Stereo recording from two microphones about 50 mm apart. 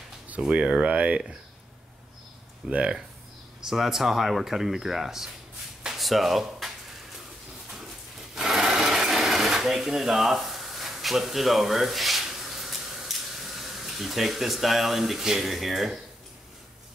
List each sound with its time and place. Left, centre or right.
0.5 s speech: right
2.7 s speech: right
3.6 s speech: centre
5.9 s a sound: centre
8.4 s sewing machine: centre